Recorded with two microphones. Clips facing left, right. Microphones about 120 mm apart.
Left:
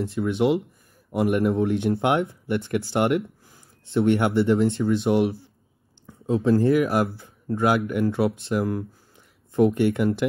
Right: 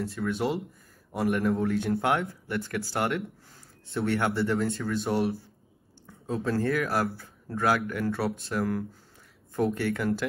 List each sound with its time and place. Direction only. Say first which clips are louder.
0.0 s speech: left 6 dB; 25° left (ahead or behind)
9.7 s speech: left 6 dB; 20° left (ahead or behind)